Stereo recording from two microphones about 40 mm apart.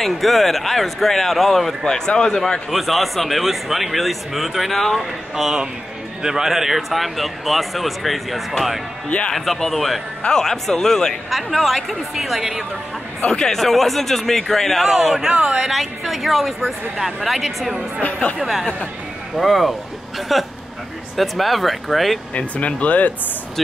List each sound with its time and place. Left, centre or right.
0.0 s speech: centre
1.9 s speech: centre
2.7 s speech: centre
5.3 s speech: centre
11.2 s speech: centre
13.5 s speech: centre
19.3 s speech: centre
22.3 s speech: left